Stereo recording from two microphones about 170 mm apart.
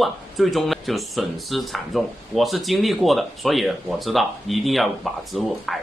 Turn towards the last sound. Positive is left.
turn(degrees=0)  # may be behind; listen again after turning